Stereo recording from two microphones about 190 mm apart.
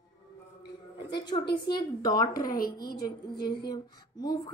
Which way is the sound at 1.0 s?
25° left (ahead or behind).